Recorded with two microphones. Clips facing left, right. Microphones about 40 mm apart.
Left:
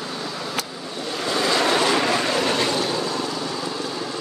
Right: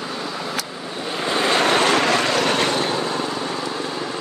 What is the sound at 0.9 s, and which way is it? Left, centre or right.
Vehicle, right.